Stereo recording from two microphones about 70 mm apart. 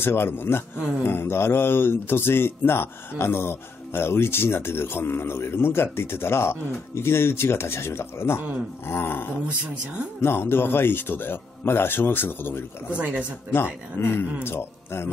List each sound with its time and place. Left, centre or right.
0.0 s speech: left
0.7 s speech: centre
1.0 s speech: left
12.9 s speech: centre
13.9 s a man's voice: left